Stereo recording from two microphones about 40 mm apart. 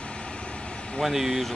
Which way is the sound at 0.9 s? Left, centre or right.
Centre.